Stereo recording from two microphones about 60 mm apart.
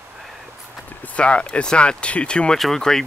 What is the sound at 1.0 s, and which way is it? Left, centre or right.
Speech, left.